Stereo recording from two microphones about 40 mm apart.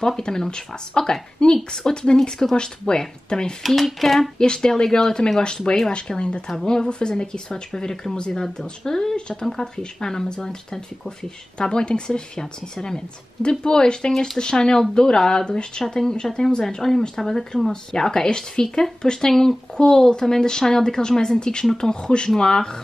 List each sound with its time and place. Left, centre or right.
0.0 s speech: centre
3.6 s speech: centre
4.4 s a woman's voice: centre
14.1 s speech: centre
14.4 s a woman's voice: centre